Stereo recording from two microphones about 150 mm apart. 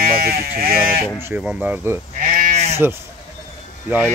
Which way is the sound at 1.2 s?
15° right (ahead or behind).